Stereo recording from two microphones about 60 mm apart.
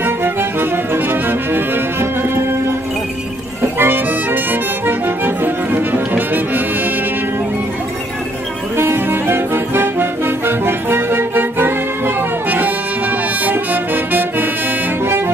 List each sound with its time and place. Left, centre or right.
0.0 s music: right
3.6 s harmonica: right
8.7 s music: right